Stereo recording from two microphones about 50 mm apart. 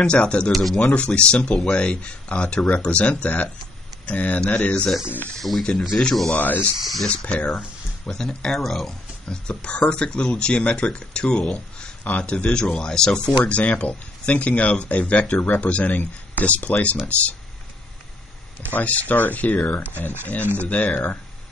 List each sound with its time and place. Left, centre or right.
0.0 s speech: left
5.9 s speech: centre
6.3 s speech: left
6.8 s speech: centre
7.2 s speech: left
8.1 s speech: centre
9.3 s speech: left
13.5 s speech: left
18.7 s speech: left